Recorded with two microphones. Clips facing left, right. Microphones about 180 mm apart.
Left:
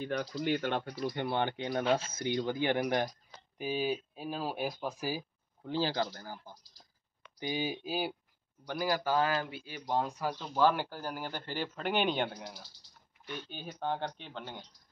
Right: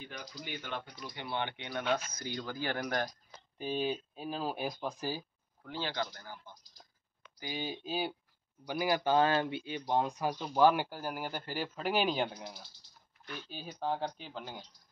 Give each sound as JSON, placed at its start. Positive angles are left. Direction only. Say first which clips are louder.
{"t": 0.0, "sound": "speech", "louder": "left 12 dB", "side_deg": 65}
{"t": 1.0, "sound": "speech", "louder": "left 6 dB", "side_deg": 50}
{"t": 5.6, "sound": "speech", "louder": "left 5 dB", "side_deg": 30}
{"t": 7.3, "sound": "speech", "louder": "left 4 dB", "side_deg": 20}
{"t": 8.6, "sound": "speech", "louder": "right 1 dB", "side_deg": -15}
{"t": 9.8, "sound": "speech", "louder": "right 1 dB", "side_deg": -15}